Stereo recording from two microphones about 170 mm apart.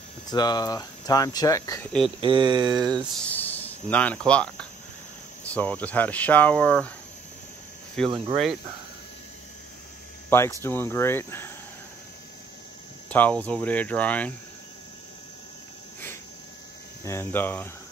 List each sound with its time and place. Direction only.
0.3 s speech: 25° left (ahead or behind)
2.1 s speech: 30° right (ahead or behind)
3.2 s speech: 10° left (ahead or behind)
10.3 s speech: 15° left (ahead or behind)
13.1 s speech: 10° left (ahead or behind)
17.0 s speech: 15° left (ahead or behind)